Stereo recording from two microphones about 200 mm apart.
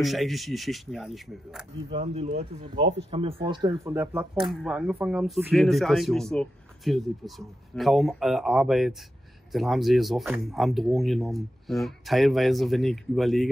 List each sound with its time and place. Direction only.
0.0 s speech: centre (ahead or behind)
1.9 s speech: 35° right (ahead or behind); by 13.5 s centre (ahead or behind)